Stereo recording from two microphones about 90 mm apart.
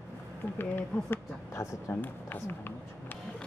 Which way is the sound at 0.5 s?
25° left (ahead or behind).